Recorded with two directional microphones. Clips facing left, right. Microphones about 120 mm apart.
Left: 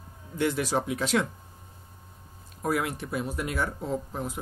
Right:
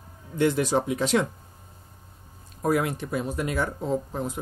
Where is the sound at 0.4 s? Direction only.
5° left (ahead or behind).